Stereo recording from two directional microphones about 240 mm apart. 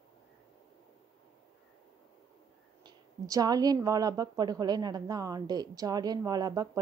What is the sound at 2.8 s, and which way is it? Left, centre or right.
A woman's voice, centre.